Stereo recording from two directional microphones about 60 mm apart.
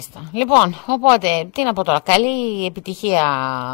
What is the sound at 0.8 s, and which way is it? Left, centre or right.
Speech, centre.